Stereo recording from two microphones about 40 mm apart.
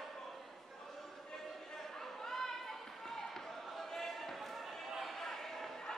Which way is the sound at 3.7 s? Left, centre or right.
Centre.